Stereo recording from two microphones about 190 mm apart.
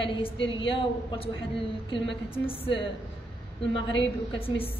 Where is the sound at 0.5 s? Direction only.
25° left (ahead or behind).